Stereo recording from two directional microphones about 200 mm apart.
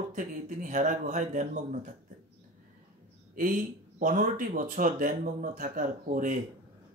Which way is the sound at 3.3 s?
45° right (ahead or behind).